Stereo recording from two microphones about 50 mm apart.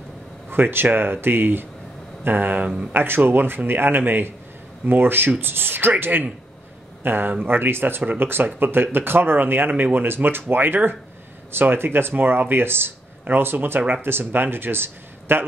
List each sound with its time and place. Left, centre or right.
0.5 s speech: right
2.9 s speech: right